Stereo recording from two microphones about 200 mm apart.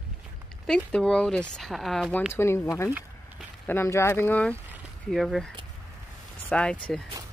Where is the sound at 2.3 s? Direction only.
10° left (ahead or behind).